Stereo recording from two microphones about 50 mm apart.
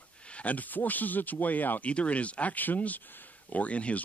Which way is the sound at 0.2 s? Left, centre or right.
Left.